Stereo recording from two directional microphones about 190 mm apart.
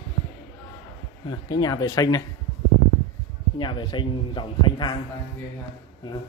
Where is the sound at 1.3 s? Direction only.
20° left (ahead or behind).